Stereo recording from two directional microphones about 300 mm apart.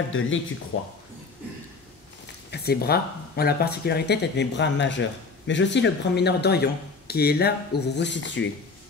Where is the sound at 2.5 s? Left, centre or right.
Left.